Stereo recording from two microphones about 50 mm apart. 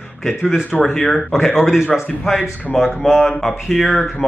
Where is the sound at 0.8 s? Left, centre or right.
Centre.